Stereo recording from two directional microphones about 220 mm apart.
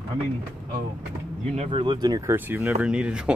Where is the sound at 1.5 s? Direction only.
25° right (ahead or behind); by 3.3 s 5° right (ahead or behind).